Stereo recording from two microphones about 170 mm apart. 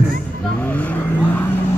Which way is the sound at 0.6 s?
10° left (ahead or behind).